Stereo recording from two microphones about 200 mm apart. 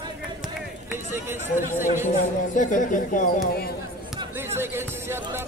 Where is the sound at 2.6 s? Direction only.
40° left (ahead or behind).